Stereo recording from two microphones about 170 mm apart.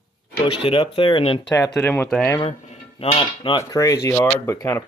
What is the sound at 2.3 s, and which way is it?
Cutlery, 35° left (ahead or behind).